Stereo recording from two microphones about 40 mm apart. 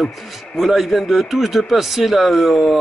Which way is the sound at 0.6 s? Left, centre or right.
Centre.